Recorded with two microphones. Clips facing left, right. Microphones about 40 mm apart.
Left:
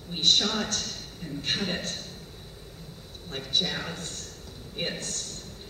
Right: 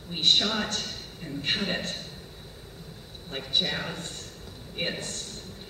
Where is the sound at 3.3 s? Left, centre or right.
Centre.